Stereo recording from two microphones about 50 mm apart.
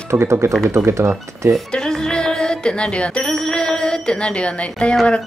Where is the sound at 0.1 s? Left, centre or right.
Right.